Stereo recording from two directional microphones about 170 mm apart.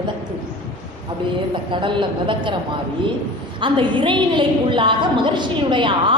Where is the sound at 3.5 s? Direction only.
30° right (ahead or behind).